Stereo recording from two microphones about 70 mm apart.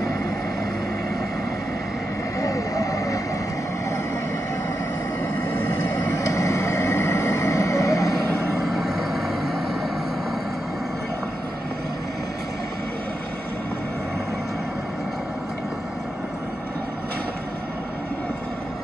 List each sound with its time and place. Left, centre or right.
2.4 s vehicle: left
5.5 s vehicle: left
6.1 s vehicle: left
8.6 s vehicle: centre